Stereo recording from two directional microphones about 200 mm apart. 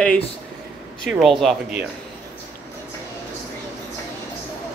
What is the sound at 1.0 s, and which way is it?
Speech, centre (ahead or behind).